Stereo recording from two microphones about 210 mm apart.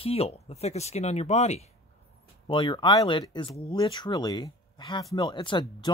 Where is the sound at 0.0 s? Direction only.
30° left (ahead or behind).